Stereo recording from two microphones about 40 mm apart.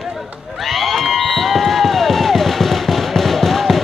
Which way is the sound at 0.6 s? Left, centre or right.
Centre.